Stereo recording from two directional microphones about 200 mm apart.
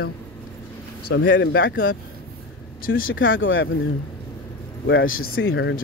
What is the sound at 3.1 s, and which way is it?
Speech, 75° left (ahead or behind).